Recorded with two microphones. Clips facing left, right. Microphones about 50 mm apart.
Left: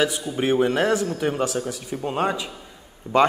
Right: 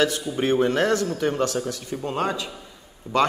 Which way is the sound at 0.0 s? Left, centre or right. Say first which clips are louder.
Even; centre.